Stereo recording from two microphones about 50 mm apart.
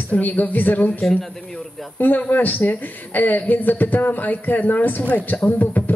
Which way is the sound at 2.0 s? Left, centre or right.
Left.